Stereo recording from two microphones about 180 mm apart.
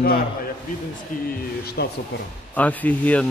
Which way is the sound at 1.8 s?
65° left (ahead or behind).